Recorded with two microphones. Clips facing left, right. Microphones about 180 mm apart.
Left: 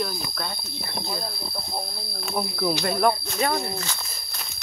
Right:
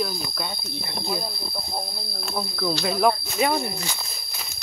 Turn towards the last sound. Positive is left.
turn(degrees=-10)  # may be behind; listen again after turning